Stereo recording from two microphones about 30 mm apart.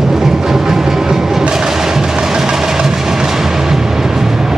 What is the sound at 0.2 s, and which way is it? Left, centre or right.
Music, centre.